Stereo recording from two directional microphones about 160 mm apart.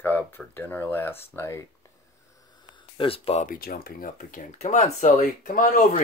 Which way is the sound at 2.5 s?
30° left (ahead or behind).